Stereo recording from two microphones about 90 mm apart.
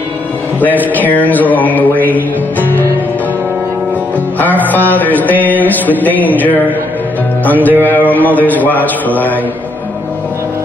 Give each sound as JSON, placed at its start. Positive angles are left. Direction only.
{"t": 0.6, "sound": "mantra", "side_deg": 20}
{"t": 4.4, "sound": "mantra", "side_deg": 20}